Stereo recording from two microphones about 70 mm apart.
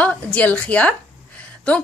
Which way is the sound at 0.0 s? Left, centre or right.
Left.